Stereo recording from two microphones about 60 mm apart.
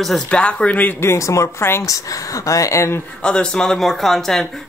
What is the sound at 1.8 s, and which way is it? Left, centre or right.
Speech, left.